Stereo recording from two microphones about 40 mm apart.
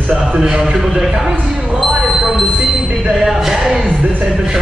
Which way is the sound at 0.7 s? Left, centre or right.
Centre.